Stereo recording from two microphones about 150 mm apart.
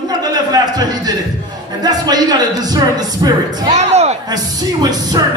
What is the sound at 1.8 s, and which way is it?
A man's voice, 25° right (ahead or behind).